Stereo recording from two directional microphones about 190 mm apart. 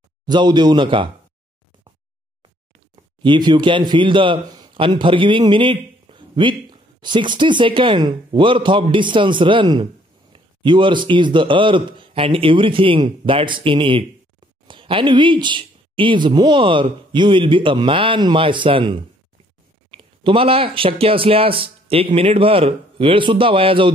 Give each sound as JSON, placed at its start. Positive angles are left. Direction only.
{"t": 0.3, "sound": "speech", "side_deg": -25}
{"t": 3.0, "sound": "speech", "side_deg": -25}